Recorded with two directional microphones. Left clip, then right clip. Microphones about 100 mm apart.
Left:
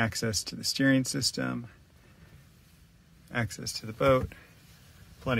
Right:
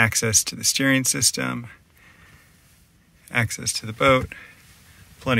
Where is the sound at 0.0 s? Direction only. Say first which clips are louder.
Right 11 dB; 20° right (ahead or behind).